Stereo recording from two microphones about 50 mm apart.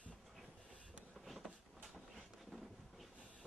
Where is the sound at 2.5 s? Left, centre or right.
Centre.